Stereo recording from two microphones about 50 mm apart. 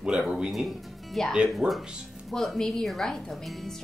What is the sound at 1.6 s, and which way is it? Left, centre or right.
Speech, centre.